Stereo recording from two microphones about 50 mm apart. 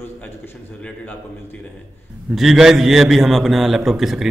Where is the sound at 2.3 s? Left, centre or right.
Centre.